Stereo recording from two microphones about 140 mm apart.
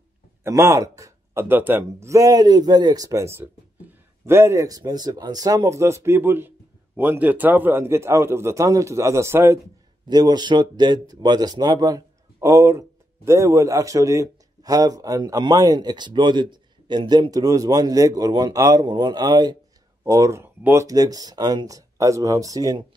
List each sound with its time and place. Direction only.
0.4 s speech: 20° right (ahead or behind)
10.0 s speech: 30° right (ahead or behind)